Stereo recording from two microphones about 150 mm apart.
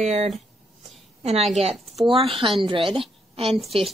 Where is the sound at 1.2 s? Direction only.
45° right (ahead or behind).